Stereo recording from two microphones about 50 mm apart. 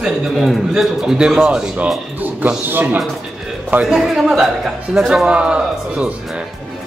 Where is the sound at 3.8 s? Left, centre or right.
Centre.